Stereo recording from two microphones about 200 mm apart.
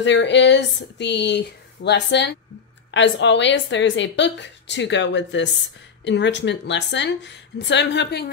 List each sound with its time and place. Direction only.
0.0 s a woman's voice: 60° left (ahead or behind)